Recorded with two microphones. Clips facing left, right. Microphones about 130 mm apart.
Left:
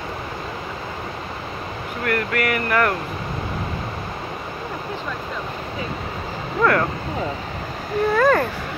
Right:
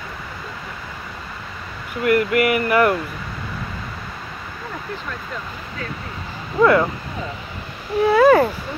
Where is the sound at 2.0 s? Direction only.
10° right (ahead or behind).